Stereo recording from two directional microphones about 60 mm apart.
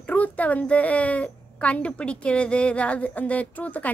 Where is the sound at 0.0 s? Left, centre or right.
Left.